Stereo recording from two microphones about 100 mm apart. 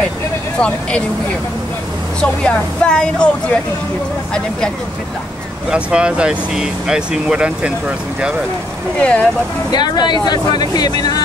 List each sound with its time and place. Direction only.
0.6 s speech: 10° left (ahead or behind)
2.1 s speech: 10° left (ahead or behind)
5.7 s speech: 10° right (ahead or behind)
9.0 s speech: 10° left (ahead or behind)
9.7 s speech: 45° left (ahead or behind)